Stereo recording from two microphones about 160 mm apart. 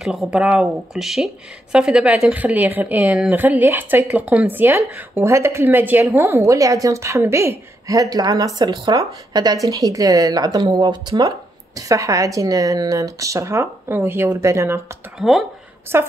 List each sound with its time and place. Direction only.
0.0 s speech: centre (ahead or behind); by 14.8 s 20° right (ahead or behind)
15.1 s speech: centre (ahead or behind)
15.9 s speech: 15° right (ahead or behind)